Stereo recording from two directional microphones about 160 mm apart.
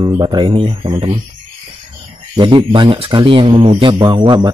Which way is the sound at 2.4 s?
30° right (ahead or behind).